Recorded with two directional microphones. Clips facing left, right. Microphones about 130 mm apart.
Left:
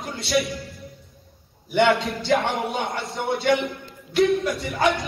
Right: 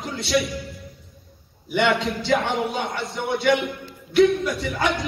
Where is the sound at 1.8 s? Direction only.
Centre (ahead or behind).